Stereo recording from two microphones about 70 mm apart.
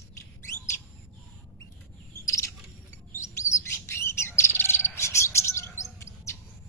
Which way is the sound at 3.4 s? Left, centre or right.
Left.